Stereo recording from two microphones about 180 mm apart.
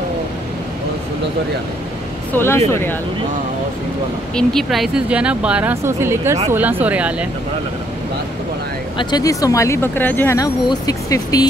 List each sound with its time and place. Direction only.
2.3 s speech: 15° left (ahead or behind)
4.4 s a woman's voice: centre (ahead or behind)
8.9 s speech: 20° left (ahead or behind)